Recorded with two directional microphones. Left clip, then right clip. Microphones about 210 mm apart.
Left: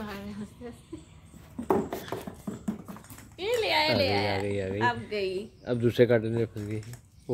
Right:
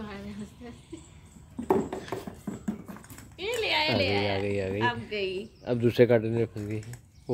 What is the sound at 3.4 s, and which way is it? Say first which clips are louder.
A child's voice: left 1 dB; 25° left (ahead or behind).